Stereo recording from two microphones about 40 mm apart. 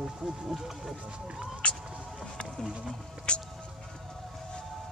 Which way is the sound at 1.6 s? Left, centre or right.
Left.